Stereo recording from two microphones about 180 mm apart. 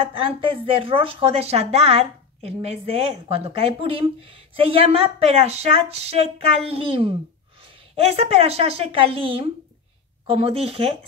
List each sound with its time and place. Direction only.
0.0 s speech: 30° right (ahead or behind)